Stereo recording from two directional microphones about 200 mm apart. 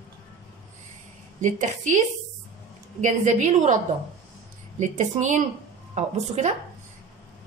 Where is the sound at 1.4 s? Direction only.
35° right (ahead or behind).